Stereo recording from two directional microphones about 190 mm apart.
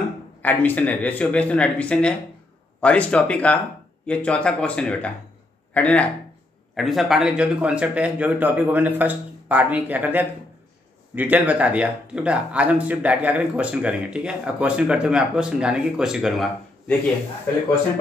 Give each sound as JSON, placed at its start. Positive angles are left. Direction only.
{"t": 0.4, "sound": "speech", "side_deg": 10}